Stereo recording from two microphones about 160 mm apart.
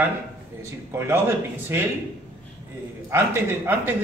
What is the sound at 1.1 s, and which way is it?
Speech, 15° right (ahead or behind).